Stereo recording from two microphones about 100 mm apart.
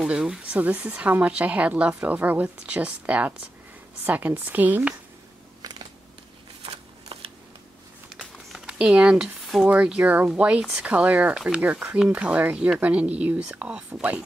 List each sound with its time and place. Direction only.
0.0 s speech: 10° right (ahead or behind)
5.6 s a sound: 45° right (ahead or behind)
6.6 s shuffling cards: 80° right
8.2 s speech: centre (ahead or behind)